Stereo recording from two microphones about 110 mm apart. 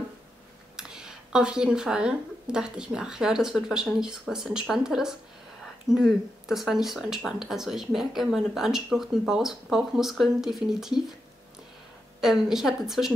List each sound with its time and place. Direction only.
0.7 s speech: 5° right (ahead or behind)
12.2 s speech: 5° right (ahead or behind)